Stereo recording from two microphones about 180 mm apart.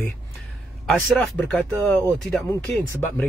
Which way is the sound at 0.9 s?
5° left (ahead or behind).